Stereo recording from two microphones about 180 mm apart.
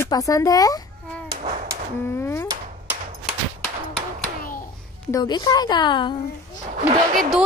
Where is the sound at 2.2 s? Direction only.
15° left (ahead or behind).